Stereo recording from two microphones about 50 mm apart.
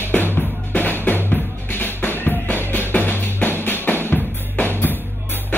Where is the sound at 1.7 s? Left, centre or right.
Left.